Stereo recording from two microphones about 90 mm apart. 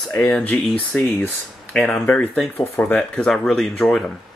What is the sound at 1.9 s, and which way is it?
Speech, 20° left (ahead or behind).